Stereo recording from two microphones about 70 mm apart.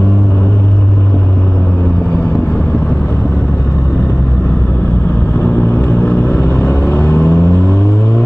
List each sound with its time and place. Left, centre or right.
6.0 s vehicle: left